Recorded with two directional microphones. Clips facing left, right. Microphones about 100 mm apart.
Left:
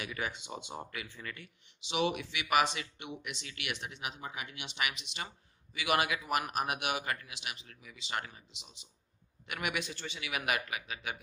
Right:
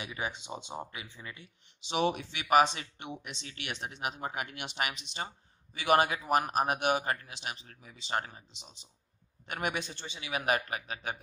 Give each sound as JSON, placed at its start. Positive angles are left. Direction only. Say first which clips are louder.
{"t": 0.0, "sound": "speech", "louder": "right 1 dB", "side_deg": -20}
{"t": 1.9, "sound": "speech", "louder": "right 2 dB", "side_deg": -40}